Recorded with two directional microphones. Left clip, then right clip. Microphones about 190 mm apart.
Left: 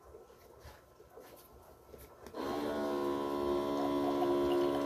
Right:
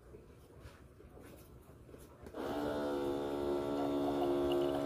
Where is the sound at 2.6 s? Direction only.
25° left (ahead or behind).